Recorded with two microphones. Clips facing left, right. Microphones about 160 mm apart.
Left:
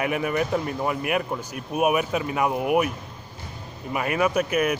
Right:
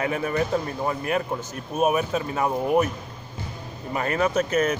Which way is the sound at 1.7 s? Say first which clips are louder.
Even; 15° left (ahead or behind).